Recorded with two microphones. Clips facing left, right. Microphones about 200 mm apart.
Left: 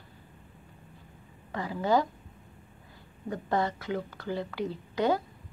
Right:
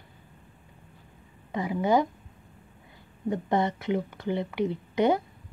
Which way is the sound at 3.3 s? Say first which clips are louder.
Right 3 dB; 20° right (ahead or behind).